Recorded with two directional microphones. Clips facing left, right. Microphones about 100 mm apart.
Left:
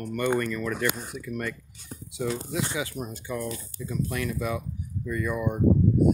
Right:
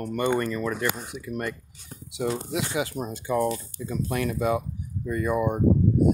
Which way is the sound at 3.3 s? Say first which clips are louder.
Right 10 dB; 40° right (ahead or behind).